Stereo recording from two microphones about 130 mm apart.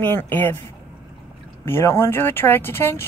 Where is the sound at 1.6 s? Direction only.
20° left (ahead or behind).